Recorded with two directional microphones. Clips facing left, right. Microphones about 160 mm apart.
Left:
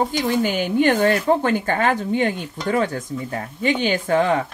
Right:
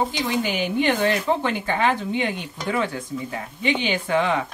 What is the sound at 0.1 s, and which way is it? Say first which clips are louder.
Speech: left 4 dB; 45° left (ahead or behind).